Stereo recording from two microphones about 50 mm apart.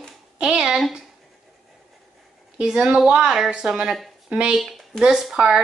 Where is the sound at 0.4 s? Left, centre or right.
Centre.